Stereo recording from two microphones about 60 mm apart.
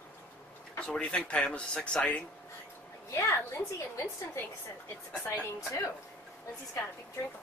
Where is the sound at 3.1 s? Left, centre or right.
Left.